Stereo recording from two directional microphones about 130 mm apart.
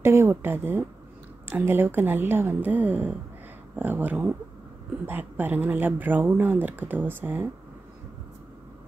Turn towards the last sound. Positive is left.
turn(degrees=-15)  # may be behind; listen again after turning